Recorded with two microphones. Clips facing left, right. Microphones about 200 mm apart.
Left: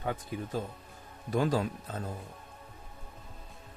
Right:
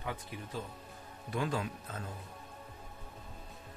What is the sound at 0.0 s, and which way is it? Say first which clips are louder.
Speech: left 6 dB; 45° left (ahead or behind).